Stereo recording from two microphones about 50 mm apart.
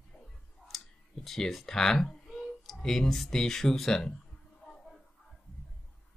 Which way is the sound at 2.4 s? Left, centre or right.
Centre.